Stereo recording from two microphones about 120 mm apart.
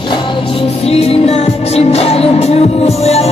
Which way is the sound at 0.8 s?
60° left (ahead or behind).